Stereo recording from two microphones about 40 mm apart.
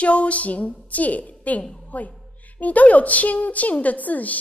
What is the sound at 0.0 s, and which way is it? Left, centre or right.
A woman's voice, left.